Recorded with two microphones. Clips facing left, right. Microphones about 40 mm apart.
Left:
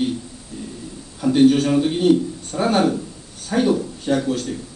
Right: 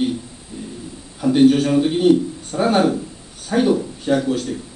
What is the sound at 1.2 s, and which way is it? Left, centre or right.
A man's voice, centre.